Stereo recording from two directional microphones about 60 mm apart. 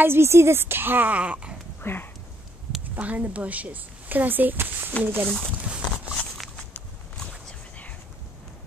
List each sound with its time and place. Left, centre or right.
0.0 s a woman's voice: right
1.8 s a sound: left
3.0 s speech: right
5.7 s speech: centre